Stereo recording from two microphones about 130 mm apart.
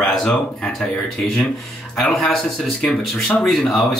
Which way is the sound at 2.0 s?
Centre (ahead or behind).